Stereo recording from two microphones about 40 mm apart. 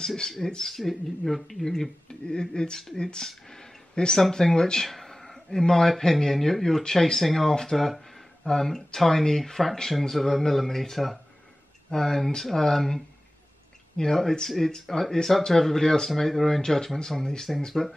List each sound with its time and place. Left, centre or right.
0.0 s speech: centre
3.3 s a sound: centre
4.2 s speech: centre